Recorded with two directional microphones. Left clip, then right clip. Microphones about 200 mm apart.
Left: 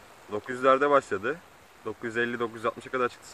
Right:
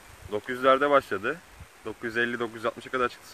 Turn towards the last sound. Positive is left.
turn(degrees=-15)  # may be behind; listen again after turning